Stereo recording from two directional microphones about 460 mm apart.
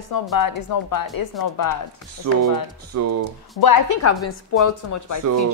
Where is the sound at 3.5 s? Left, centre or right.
Left.